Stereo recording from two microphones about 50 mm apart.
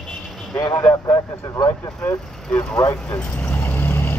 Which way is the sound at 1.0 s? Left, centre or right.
Left.